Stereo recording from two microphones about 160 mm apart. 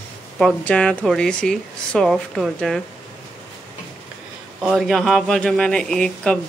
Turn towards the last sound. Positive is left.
turn(degrees=5)  # may be behind; listen again after turning